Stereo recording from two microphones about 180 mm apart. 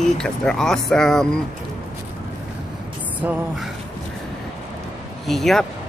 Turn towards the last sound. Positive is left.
turn(degrees=0)  # may be behind; listen again after turning